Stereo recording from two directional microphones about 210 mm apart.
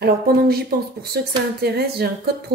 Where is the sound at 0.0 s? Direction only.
45° right (ahead or behind).